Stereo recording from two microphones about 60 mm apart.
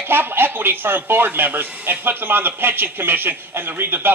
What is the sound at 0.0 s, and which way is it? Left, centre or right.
Speech, right.